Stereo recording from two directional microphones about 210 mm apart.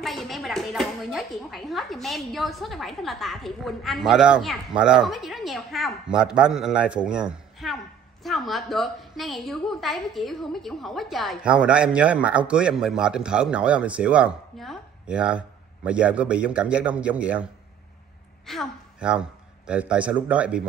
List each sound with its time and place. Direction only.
0.0 s a woman's voice: centre (ahead or behind)
18.5 s a man's voice: centre (ahead or behind)